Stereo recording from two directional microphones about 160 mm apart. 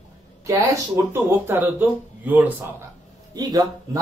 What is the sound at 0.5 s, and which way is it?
Speech, 15° right (ahead or behind).